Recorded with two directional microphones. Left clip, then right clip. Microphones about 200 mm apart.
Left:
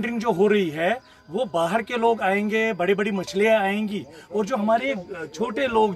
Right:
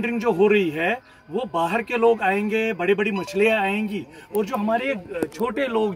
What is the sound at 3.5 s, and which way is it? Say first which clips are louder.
Speech: left 1 dB; 15° left (ahead or behind).